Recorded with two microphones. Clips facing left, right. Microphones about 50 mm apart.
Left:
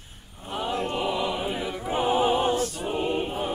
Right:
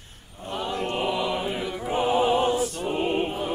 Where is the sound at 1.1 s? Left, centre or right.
Right.